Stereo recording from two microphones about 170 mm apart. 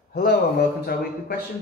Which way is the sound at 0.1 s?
70° left (ahead or behind).